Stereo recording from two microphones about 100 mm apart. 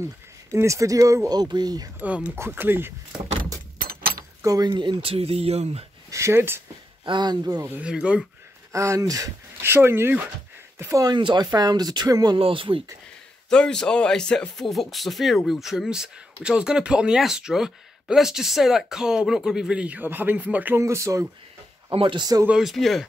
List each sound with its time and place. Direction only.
0.0 s speech: 30° right (ahead or behind)
2.0 s speech: 15° right (ahead or behind)
4.4 s speech: 35° right (ahead or behind); by 5.9 s 85° right
6.0 s speech: 30° right (ahead or behind)
7.1 s speech: 50° right (ahead or behind)
7.8 s speech: 10° right (ahead or behind)
8.7 s speech: 30° right (ahead or behind)
11.1 s speech: 50° right (ahead or behind)
12.4 s speech: 65° right (ahead or behind)
13.5 s speech: 5° left (ahead or behind); by 20.8 s 15° right (ahead or behind)
20.8 s speech: 30° right (ahead or behind)
21.9 s speech: 55° right (ahead or behind)
22.5 s speech: 5° right (ahead or behind)